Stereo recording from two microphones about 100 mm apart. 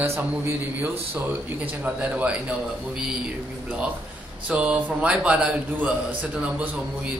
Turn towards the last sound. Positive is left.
turn(degrees=-15)  # may be behind; listen again after turning